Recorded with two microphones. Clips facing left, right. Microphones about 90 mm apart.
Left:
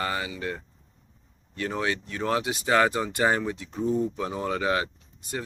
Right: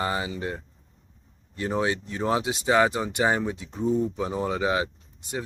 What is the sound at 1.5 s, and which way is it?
Speech, 20° right (ahead or behind).